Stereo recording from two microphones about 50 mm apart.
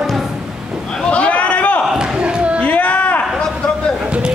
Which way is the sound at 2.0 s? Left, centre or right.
Centre.